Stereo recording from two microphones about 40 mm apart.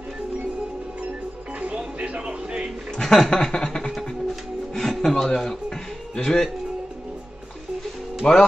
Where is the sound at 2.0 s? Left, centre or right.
Right.